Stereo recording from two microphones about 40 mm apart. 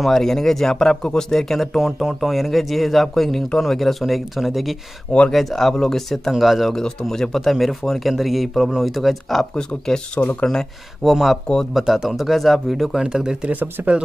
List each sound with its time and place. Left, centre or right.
0.0 s speech: centre
1.8 s a man's voice: centre
6.3 s a man's voice: centre
6.7 s a man's voice: centre
9.6 s speech: centre
11.1 s a man's voice: centre
13.0 s speech: centre
13.5 s speech: right